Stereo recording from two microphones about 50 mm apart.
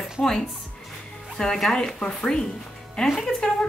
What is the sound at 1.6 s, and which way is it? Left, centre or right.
Speech, centre.